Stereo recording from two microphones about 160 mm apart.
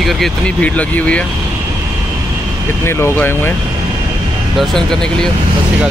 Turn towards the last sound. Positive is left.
turn(degrees=5)  # may be behind; listen again after turning